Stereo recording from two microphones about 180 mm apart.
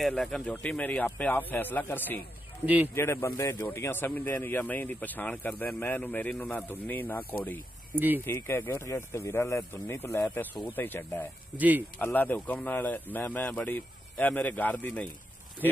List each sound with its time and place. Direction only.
0.0 s speech: centre (ahead or behind)
2.6 s speech: 10° right (ahead or behind)
2.9 s speech: 15° left (ahead or behind)
7.9 s speech: 10° right (ahead or behind)
8.3 s speech: 15° left (ahead or behind)
11.5 s speech: 10° right (ahead or behind)
12.0 s speech: 10° left (ahead or behind)